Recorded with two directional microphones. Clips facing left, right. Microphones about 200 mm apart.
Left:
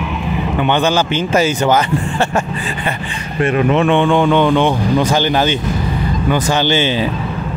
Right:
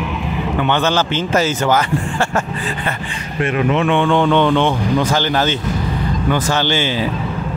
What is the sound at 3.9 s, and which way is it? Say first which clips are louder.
Speech: left 2 dB; 15° left (ahead or behind).